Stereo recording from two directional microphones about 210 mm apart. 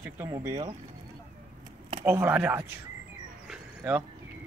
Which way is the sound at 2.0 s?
10° right (ahead or behind).